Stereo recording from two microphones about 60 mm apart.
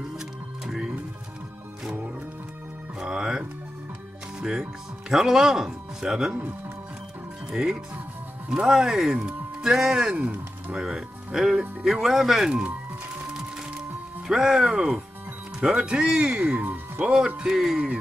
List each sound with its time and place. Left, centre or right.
0.7 s music: centre
3.0 s music: centre
4.4 s speech: centre
7.5 s speech: centre
10.1 s speech: right
13.3 s music: centre
15.6 s speech: centre
17.4 s speech: centre